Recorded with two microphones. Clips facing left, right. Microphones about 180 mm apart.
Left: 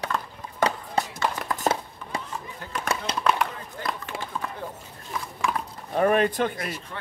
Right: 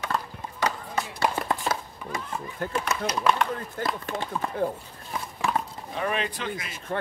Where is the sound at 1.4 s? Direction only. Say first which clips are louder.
Right 3 dB; 30° right (ahead or behind).